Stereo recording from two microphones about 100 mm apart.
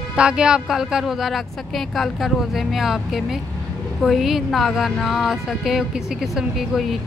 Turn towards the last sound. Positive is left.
turn(degrees=0)  # may be behind; listen again after turning